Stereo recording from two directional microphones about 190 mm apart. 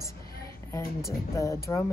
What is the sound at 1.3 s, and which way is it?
Speech, 15° left (ahead or behind).